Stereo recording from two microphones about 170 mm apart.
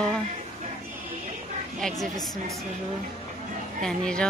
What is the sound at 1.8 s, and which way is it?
Speech, centre (ahead or behind).